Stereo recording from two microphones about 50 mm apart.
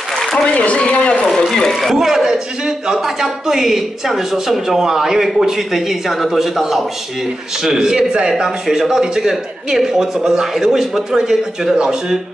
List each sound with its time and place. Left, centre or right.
0.6 s a man's voice: left
1.5 s a man's voice: centre
2.0 s speech: centre